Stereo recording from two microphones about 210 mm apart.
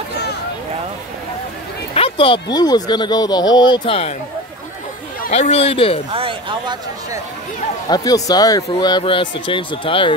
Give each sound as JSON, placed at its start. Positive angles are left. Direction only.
{"t": 2.0, "sound": "a sound", "side_deg": 25}
{"t": 2.5, "sound": "speech", "side_deg": 20}
{"t": 5.3, "sound": "speech", "side_deg": 30}
{"t": 6.1, "sound": "speech", "side_deg": -25}
{"t": 7.9, "sound": "speech", "side_deg": 20}